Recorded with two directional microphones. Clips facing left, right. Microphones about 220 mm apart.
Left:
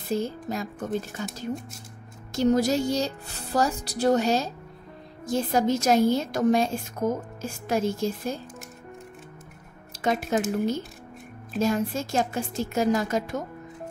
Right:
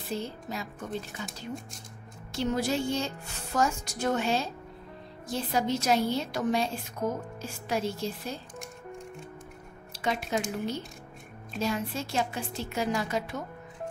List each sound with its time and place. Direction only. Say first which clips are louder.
0.1 s a woman's voice: left 7 dB; 45° left (ahead or behind)
9.9 s a woman's voice: left 5 dB; 45° left (ahead or behind)